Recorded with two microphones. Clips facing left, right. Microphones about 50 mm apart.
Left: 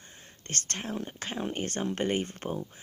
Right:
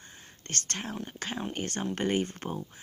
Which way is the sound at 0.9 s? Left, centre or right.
Centre.